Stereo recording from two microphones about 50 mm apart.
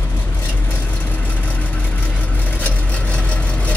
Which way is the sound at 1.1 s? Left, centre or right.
Left.